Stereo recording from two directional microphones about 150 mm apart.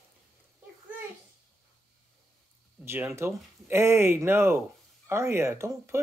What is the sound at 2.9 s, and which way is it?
Speech, 15° right (ahead or behind).